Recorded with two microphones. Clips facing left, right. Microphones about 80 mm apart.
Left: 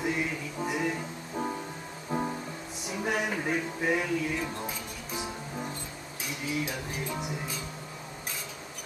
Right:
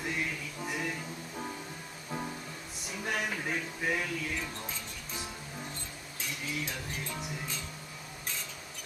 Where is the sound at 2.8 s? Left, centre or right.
Centre.